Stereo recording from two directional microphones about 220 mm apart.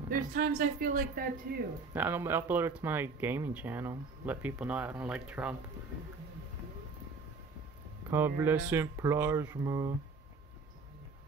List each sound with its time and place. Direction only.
0.1 s speech: 40° right (ahead or behind)
2.0 s speech: 10° right (ahead or behind)
8.4 s speech: 10° right (ahead or behind)